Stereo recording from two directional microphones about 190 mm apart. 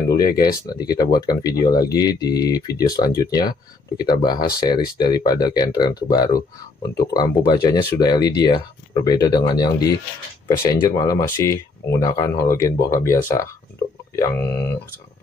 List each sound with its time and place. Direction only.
0.1 s speech: 20° left (ahead or behind)